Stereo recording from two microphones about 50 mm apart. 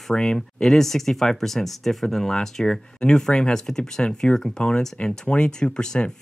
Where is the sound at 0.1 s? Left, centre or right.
Centre.